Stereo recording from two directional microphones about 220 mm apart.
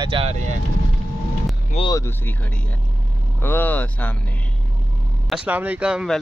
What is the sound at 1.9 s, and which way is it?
Speech, 10° left (ahead or behind).